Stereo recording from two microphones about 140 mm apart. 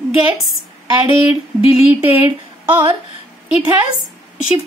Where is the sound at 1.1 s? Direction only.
40° left (ahead or behind).